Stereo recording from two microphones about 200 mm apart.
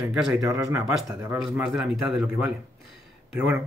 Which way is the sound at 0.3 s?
15° right (ahead or behind).